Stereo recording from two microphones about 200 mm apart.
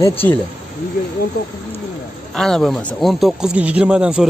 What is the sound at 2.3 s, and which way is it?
Speech, centre (ahead or behind).